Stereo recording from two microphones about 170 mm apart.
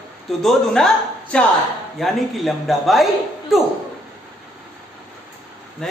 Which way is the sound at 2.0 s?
Centre (ahead or behind).